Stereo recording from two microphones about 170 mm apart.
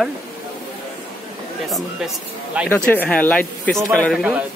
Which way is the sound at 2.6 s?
5° left (ahead or behind).